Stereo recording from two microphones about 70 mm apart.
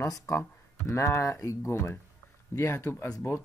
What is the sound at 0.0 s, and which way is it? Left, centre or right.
Speech, left.